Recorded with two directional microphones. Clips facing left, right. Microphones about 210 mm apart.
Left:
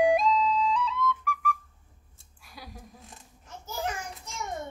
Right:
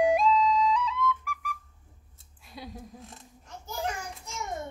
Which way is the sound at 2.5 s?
25° right (ahead or behind).